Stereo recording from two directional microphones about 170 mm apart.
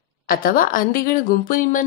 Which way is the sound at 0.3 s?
55° left (ahead or behind).